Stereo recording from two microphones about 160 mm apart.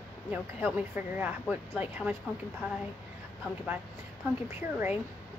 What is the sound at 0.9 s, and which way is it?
A woman's voice, 10° right (ahead or behind).